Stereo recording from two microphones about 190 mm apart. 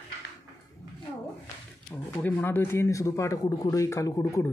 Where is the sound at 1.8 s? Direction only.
10° left (ahead or behind).